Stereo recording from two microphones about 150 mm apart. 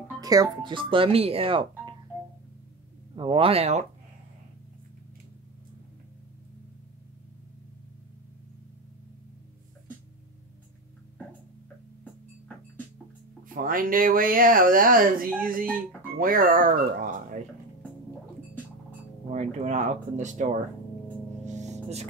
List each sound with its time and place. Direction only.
0.2 s speech: 25° right (ahead or behind)
3.2 s speech: 35° right (ahead or behind)
12.0 s music: 10° left (ahead or behind)
13.6 s speech: 65° right (ahead or behind)
19.3 s speech: 50° right (ahead or behind)
21.5 s music: 50° right (ahead or behind)